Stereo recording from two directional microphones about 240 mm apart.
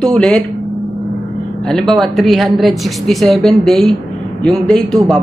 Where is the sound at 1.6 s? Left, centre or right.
Centre.